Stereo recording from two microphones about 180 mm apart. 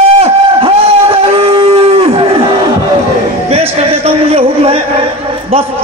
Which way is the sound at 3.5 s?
35° right (ahead or behind).